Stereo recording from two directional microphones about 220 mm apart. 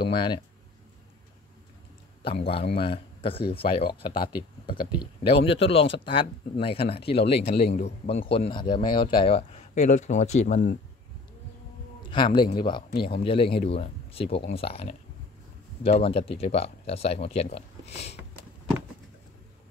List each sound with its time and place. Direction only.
0.0 s speech: 20° left (ahead or behind)
2.2 s speech: 25° left (ahead or behind)
12.1 s speech: 20° left (ahead or behind)